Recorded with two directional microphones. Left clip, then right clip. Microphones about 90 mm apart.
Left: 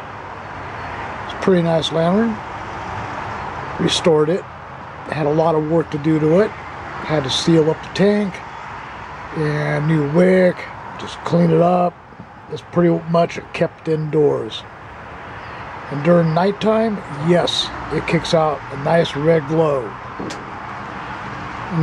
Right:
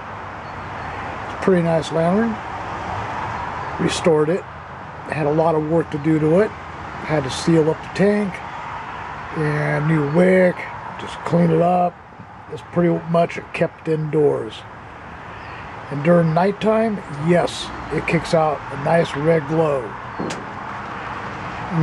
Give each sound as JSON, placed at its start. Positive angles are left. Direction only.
{"t": 1.4, "sound": "speech", "side_deg": 5}
{"t": 3.8, "sound": "speech", "side_deg": 5}
{"t": 9.4, "sound": "speech", "side_deg": 0}
{"t": 11.6, "sound": "speech", "side_deg": 25}
{"t": 12.7, "sound": "speech", "side_deg": 10}
{"t": 16.0, "sound": "speech", "side_deg": 0}